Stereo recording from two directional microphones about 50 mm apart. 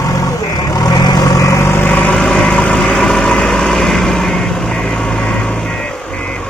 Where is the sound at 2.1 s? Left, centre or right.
Centre.